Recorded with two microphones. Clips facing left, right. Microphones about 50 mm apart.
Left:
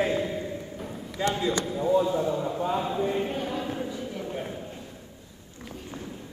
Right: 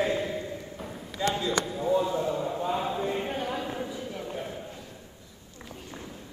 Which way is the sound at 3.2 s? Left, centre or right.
Right.